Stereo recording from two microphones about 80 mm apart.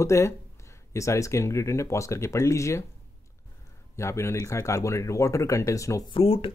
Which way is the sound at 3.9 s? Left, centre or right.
Left.